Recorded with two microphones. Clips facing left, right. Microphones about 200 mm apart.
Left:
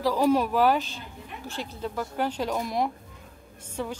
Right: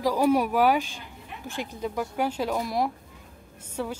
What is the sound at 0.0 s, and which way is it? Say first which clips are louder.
Speech: even; 10° right (ahead or behind).